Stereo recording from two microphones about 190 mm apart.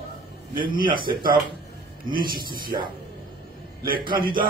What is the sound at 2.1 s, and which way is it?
Speech, 50° right (ahead or behind).